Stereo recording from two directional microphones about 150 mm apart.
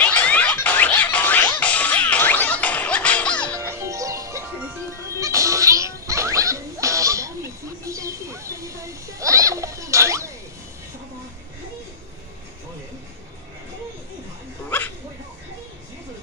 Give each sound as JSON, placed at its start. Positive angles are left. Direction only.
{"t": 0.0, "sound": "music", "side_deg": 10}
{"t": 3.5, "sound": "music", "side_deg": -20}
{"t": 14.7, "sound": "dog", "side_deg": 10}